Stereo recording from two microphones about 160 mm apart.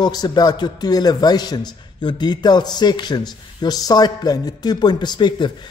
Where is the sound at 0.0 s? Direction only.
25° left (ahead or behind).